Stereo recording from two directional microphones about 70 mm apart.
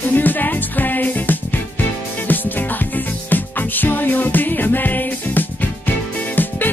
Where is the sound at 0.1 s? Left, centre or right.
Left.